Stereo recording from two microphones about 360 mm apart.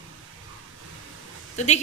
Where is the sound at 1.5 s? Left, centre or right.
Centre.